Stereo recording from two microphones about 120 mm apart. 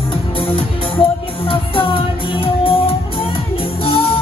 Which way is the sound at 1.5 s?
50° left (ahead or behind).